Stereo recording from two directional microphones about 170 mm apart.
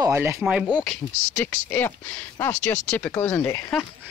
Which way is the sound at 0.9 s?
10° left (ahead or behind).